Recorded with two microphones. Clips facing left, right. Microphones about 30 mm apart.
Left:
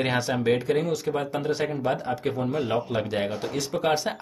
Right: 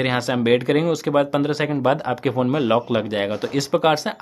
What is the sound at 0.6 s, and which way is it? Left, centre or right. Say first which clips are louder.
Speech: right 5 dB; right.